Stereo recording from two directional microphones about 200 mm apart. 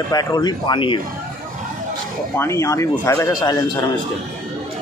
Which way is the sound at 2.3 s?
15° left (ahead or behind).